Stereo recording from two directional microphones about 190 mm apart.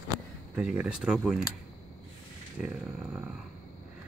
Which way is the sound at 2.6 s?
5° right (ahead or behind).